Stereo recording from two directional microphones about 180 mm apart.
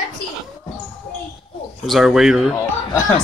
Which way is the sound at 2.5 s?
15° left (ahead or behind).